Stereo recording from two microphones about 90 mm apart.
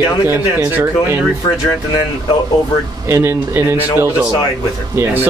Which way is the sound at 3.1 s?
25° right (ahead or behind).